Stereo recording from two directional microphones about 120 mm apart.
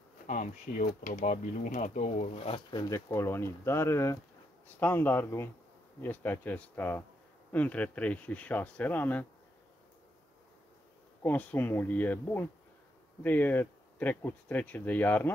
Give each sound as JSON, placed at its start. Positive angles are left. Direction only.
{"t": 0.3, "sound": "speech", "side_deg": 90}
{"t": 2.3, "sound": "speech", "side_deg": 55}
{"t": 2.7, "sound": "speech", "side_deg": 35}
{"t": 3.1, "sound": "speech", "side_deg": 20}
{"t": 11.2, "sound": "speech", "side_deg": 15}